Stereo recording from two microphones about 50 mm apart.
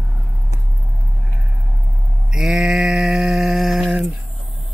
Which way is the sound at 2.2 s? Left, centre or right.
Centre.